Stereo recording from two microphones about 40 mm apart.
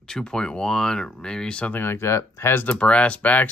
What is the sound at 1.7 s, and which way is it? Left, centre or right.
Speech, left.